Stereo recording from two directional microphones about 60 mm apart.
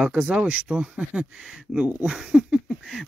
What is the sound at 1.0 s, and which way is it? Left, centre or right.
Speech, centre.